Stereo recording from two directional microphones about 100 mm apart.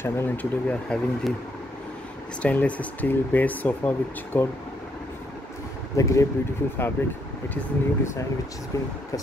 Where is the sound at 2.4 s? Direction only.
15° left (ahead or behind).